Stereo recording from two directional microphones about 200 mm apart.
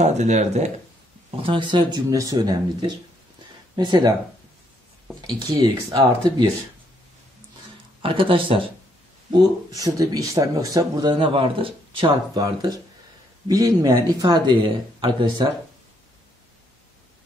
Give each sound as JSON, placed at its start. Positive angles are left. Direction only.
{"t": 0.0, "sound": "speech", "side_deg": -35}
{"t": 1.4, "sound": "speech", "side_deg": -25}
{"t": 5.2, "sound": "speech", "side_deg": -20}
{"t": 8.0, "sound": "speech", "side_deg": -25}